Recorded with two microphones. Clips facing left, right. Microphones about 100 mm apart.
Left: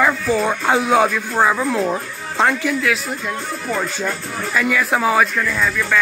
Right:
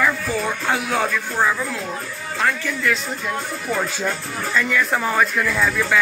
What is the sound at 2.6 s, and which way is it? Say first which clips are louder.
Speech: left 3 dB; 5° left (ahead or behind).